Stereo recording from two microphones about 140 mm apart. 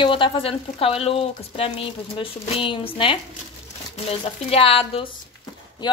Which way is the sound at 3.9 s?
45° left (ahead or behind).